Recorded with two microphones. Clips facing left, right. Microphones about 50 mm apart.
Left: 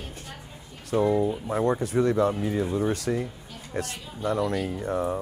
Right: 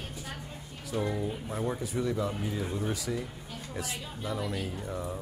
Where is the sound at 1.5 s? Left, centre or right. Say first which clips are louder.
Left 9 dB; left.